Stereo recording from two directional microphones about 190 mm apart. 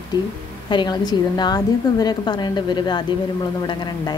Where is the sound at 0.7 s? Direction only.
20° left (ahead or behind).